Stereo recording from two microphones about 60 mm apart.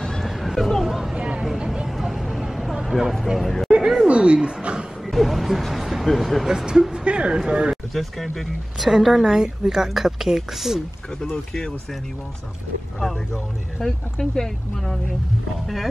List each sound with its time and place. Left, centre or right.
0.0 s a sound: centre
1.2 s vehicle: centre
1.6 s a sound: centre
4.1 s speech: centre
5.1 s speech: centre
6.5 s speech: centre
7.7 s speech: centre
13.0 s speech: centre